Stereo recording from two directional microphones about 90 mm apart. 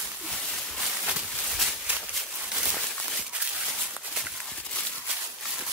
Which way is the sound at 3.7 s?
5° right (ahead or behind).